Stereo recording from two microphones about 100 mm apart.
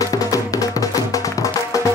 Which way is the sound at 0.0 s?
35° left (ahead or behind).